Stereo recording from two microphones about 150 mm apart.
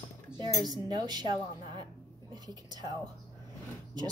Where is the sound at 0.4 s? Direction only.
30° right (ahead or behind).